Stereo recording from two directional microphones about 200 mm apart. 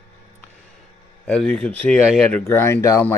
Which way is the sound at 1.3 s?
5° left (ahead or behind).